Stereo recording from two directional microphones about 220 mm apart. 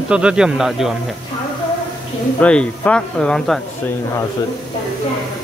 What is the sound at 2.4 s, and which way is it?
Speech, 5° left (ahead or behind).